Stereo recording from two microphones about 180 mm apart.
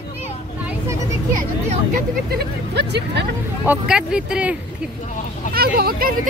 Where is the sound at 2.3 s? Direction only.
65° right (ahead or behind).